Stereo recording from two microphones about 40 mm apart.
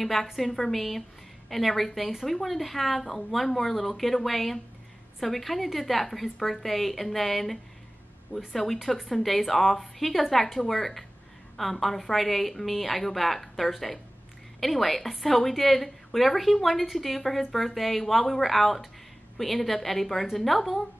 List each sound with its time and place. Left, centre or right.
0.0 s a woman's voice: centre
8.3 s speech: left
9.2 s a woman's voice: centre